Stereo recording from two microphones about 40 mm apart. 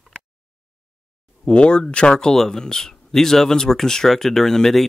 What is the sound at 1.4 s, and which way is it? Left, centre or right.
Speech, left.